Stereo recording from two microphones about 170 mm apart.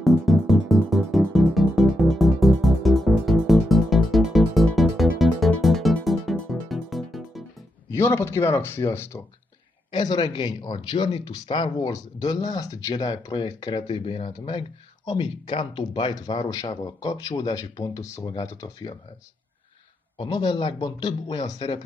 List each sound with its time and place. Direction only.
0.0 s music: centre (ahead or behind)
7.9 s speech: 15° left (ahead or behind)
9.8 s speech: 25° left (ahead or behind)
20.2 s speech: 25° left (ahead or behind)